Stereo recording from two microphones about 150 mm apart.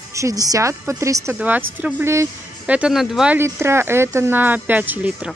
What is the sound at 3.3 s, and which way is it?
A woman's voice, 15° right (ahead or behind).